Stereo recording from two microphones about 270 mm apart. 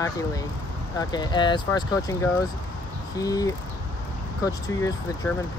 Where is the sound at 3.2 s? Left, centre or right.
Centre.